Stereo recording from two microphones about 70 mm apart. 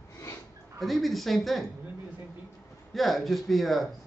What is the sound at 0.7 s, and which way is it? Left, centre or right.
Speech, centre.